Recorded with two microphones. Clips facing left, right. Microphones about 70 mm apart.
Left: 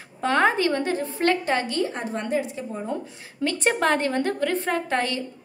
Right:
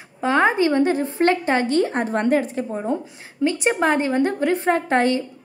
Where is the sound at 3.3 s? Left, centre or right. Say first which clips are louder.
Right 3 dB; centre; by 5.2 s right.